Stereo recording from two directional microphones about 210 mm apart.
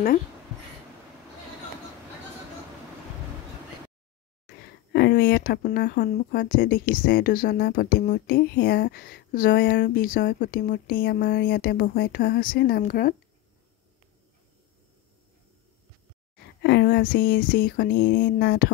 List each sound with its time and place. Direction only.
4.9 s a woman's voice: 50° left (ahead or behind)
16.6 s a woman's voice: 55° left (ahead or behind)